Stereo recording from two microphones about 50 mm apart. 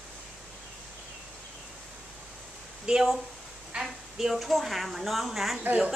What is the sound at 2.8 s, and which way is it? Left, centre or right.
Speech, centre.